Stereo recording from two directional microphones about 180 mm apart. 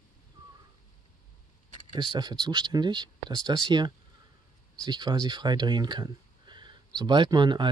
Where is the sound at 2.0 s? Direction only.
25° right (ahead or behind).